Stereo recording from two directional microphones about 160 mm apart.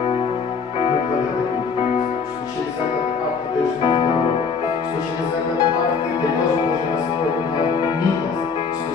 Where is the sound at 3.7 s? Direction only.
30° left (ahead or behind).